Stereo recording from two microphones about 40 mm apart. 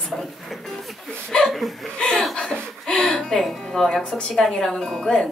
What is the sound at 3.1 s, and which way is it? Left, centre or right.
Music, centre.